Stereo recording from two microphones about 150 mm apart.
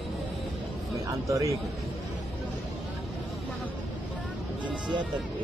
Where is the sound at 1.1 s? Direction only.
20° right (ahead or behind).